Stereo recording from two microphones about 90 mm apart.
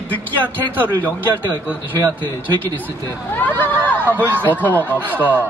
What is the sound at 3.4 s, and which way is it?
Hubbub, 20° left (ahead or behind).